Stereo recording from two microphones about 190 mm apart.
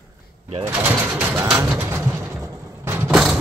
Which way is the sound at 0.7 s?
10° right (ahead or behind).